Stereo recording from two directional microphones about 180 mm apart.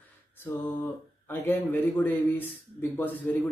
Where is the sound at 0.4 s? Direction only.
10° left (ahead or behind).